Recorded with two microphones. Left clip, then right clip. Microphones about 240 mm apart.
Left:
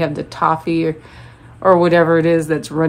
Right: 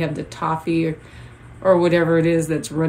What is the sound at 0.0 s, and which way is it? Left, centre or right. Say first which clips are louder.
Speech: left 7 dB; left.